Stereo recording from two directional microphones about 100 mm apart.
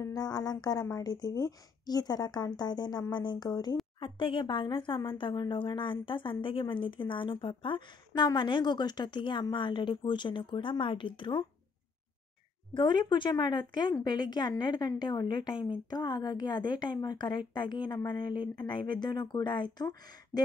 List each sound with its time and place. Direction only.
0.0 s a woman's voice: 40° left (ahead or behind)
4.0 s speech: 55° left (ahead or behind)
12.7 s a woman's voice: 45° left (ahead or behind)